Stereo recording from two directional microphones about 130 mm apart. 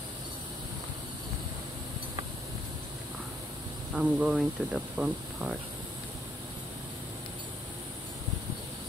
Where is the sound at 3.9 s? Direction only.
10° right (ahead or behind).